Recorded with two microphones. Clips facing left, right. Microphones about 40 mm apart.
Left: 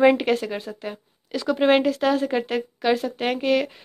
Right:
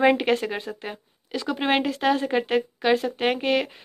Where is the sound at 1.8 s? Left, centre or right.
Right.